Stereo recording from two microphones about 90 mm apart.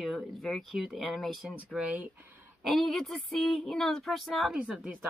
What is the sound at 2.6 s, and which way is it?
Speech, centre (ahead or behind).